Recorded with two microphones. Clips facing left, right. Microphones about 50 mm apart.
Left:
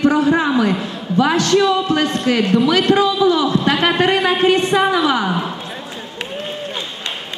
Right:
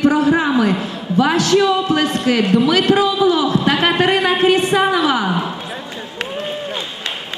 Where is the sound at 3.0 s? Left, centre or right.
Centre.